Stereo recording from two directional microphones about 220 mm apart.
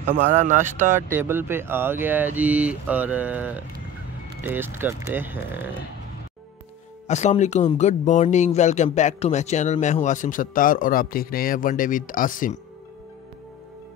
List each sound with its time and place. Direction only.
0.0 s speech: 35° right (ahead or behind)
1.1 s speech: 10° right (ahead or behind)
7.1 s a man's voice: 30° left (ahead or behind)